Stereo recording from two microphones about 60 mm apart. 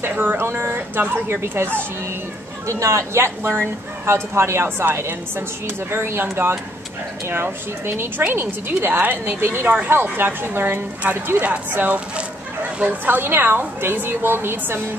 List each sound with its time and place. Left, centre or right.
0.0 s a woman's voice: right
2.6 s a woman's voice: right
13.0 s a woman's voice: right